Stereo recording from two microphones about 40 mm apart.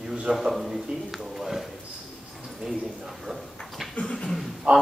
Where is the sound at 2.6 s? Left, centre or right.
Centre.